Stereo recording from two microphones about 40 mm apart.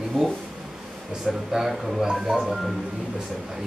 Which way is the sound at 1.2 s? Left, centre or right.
Centre.